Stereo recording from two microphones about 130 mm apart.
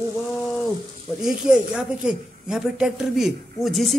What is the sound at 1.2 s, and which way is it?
Speech, 5° right (ahead or behind).